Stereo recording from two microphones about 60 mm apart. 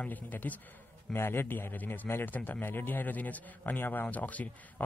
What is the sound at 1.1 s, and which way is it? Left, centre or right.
A man's voice, left.